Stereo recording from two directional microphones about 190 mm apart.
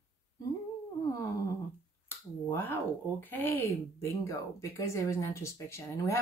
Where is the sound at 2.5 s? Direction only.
10° left (ahead or behind).